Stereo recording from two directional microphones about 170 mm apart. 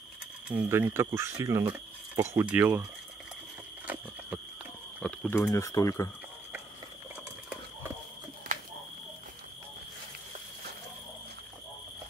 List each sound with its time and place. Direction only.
0.5 s speech: 10° right (ahead or behind)
3.8 s a sound: 10° right (ahead or behind)
5.0 s speech: 5° left (ahead or behind)
5.4 s speech: 20° left (ahead or behind)